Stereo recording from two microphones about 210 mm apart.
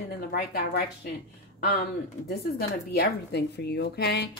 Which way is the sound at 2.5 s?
50° left (ahead or behind).